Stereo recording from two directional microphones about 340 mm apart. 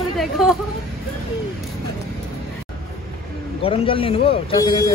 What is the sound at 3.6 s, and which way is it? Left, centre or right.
Speech, centre.